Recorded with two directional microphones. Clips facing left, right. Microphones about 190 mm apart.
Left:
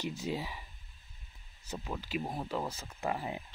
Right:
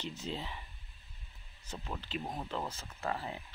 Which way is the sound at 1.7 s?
10° left (ahead or behind).